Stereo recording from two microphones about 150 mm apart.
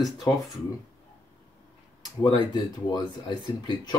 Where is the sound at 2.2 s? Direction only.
30° left (ahead or behind).